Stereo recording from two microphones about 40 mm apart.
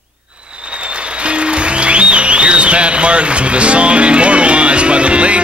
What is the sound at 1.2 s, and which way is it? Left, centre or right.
Speech, right.